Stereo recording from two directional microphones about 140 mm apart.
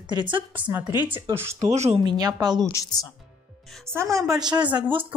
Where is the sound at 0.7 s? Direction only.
15° right (ahead or behind).